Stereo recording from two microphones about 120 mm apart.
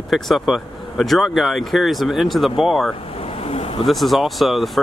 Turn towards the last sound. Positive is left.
turn(degrees=0)  # may be behind; listen again after turning